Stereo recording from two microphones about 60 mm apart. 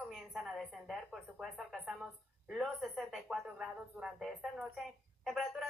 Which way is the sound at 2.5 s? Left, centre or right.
Centre.